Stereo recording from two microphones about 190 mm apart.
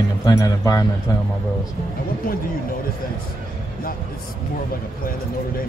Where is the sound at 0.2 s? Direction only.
20° left (ahead or behind).